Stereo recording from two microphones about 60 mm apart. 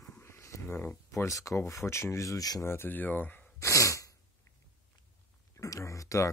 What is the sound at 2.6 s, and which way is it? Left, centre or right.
Speech, left.